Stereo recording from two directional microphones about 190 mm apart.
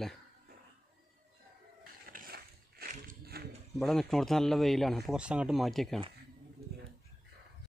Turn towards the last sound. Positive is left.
turn(degrees=0)  # may be behind; listen again after turning